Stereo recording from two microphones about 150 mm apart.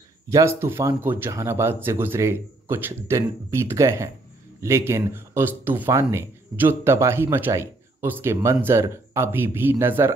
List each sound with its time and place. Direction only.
0.3 s speech: 20° right (ahead or behind)